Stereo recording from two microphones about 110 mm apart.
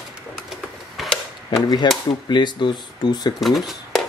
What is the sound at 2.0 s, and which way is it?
Speech, 40° left (ahead or behind).